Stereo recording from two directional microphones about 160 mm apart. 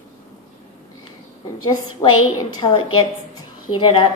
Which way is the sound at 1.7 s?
25° left (ahead or behind).